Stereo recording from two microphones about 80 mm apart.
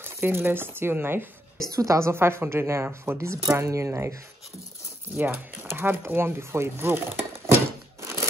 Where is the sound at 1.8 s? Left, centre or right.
Right.